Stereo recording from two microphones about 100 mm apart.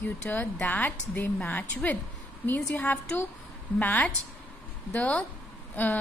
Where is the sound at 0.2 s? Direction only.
15° left (ahead or behind).